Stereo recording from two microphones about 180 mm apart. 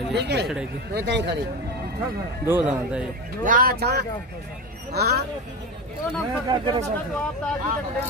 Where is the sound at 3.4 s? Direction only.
50° right (ahead or behind).